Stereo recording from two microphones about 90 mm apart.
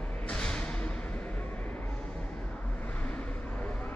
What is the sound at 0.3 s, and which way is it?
Music, 10° left (ahead or behind).